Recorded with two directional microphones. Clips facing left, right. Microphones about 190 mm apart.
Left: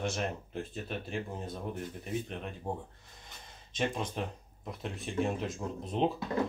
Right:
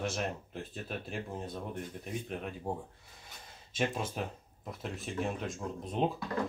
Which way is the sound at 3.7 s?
5° right (ahead or behind).